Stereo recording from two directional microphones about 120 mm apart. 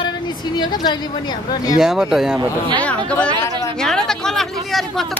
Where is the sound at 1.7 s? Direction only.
5° right (ahead or behind).